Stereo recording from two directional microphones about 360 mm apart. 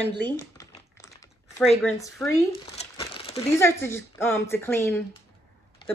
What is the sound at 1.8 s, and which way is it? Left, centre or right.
Speech, centre.